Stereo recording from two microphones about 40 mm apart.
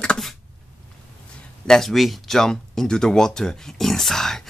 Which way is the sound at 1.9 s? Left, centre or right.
Centre.